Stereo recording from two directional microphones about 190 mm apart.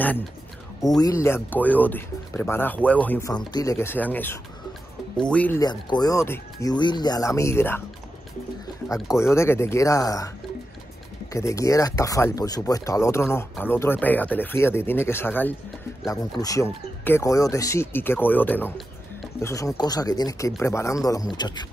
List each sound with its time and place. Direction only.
0.8 s speech: 20° left (ahead or behind)
5.6 s speech: 20° left (ahead or behind)
8.8 s speech: 15° left (ahead or behind)
11.3 s speech: 15° left (ahead or behind)